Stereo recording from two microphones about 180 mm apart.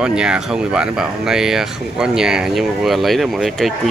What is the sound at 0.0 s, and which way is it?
Speech, 5° right (ahead or behind).